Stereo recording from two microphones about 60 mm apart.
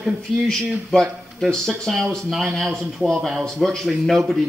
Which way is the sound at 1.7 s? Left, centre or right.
Centre.